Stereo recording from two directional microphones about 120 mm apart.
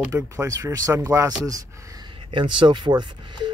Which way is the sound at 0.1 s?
25° right (ahead or behind).